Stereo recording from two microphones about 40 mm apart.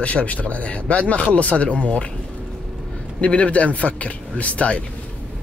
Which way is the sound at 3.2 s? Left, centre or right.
Left.